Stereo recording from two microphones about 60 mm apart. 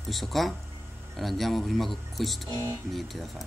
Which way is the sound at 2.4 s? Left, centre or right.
Right.